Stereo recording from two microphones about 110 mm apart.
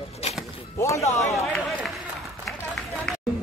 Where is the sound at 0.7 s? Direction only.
25° left (ahead or behind).